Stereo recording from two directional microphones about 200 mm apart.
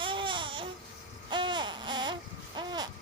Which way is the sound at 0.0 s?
25° right (ahead or behind).